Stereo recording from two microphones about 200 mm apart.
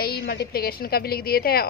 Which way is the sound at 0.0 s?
50° left (ahead or behind).